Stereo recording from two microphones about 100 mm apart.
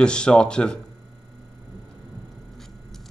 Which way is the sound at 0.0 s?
10° left (ahead or behind).